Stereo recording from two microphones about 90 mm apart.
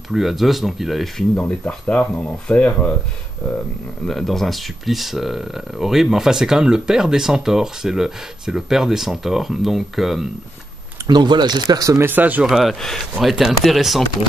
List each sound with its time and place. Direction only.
0.1 s speech: centre (ahead or behind)
1.4 s speech: 15° left (ahead or behind)
4.1 s speech: 5° left (ahead or behind)
11.1 s speech: 55° right (ahead or behind)
12.0 s speech: 20° right (ahead or behind)
12.4 s speech: centre (ahead or behind)